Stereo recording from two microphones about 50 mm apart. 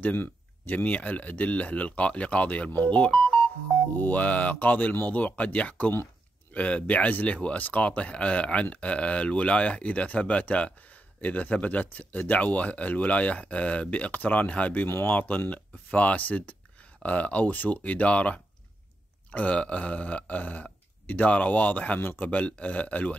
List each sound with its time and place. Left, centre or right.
0.0 s speech: left